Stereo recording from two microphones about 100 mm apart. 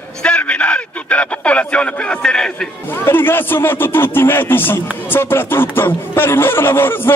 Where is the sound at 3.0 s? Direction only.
20° left (ahead or behind).